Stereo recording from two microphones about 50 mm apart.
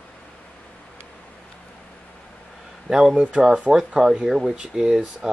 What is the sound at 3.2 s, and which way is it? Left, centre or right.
Speech, centre.